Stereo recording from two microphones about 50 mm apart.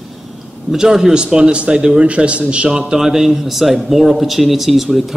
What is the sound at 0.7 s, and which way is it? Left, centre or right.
A man's voice, centre.